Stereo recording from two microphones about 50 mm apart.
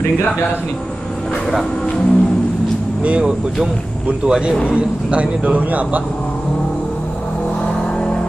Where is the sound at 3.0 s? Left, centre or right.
Right.